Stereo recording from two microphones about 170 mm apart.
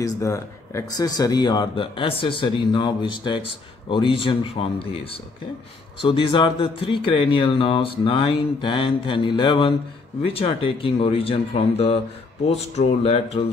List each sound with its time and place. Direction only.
0.0 s speech: 20° left (ahead or behind); by 13.5 s 35° left (ahead or behind)